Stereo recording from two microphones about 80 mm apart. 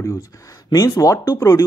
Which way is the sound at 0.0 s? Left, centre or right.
Left.